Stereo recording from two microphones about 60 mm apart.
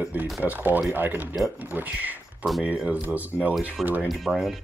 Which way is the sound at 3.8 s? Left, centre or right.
Centre.